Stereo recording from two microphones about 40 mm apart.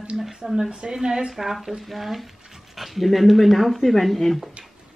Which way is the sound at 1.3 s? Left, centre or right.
Centre.